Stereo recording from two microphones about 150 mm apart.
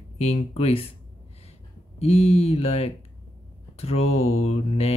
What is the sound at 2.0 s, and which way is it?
Speech, 45° left (ahead or behind).